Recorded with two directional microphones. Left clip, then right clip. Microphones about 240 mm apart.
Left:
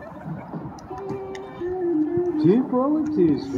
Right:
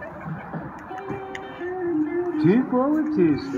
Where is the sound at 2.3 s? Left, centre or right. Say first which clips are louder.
Even; right.